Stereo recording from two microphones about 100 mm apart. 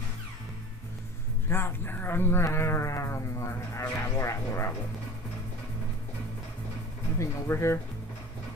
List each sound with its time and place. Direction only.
1.5 s speech: 25° left (ahead or behind)
7.2 s speech: 25° left (ahead or behind)